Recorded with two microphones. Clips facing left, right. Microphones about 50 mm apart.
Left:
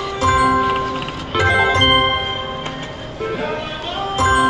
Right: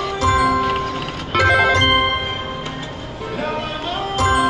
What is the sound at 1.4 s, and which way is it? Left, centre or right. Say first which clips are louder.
Music: even; centre.